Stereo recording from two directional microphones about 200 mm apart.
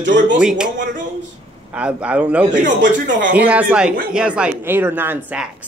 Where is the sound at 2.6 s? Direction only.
40° right (ahead or behind).